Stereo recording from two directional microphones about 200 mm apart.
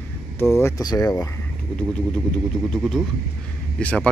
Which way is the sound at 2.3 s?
Centre (ahead or behind).